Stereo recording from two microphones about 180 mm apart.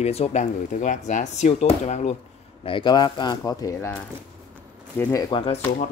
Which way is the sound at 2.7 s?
25° left (ahead or behind).